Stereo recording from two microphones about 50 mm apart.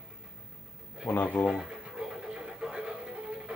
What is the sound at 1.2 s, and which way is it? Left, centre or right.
Speech, left.